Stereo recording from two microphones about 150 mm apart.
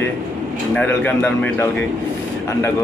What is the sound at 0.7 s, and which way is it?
Speech, 10° left (ahead or behind).